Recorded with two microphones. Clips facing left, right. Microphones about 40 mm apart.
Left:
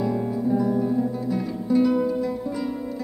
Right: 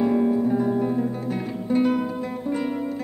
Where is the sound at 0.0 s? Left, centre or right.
Right.